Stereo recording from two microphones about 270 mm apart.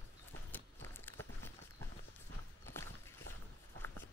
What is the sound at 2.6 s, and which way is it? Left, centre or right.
Walk, centre.